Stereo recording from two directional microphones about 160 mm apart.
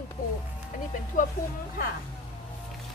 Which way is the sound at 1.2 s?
55° left (ahead or behind).